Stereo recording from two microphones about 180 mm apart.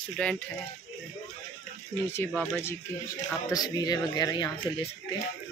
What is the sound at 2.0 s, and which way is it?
Speech, 10° left (ahead or behind).